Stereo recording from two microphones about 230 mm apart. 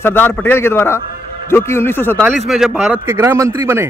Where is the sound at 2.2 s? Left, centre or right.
Centre.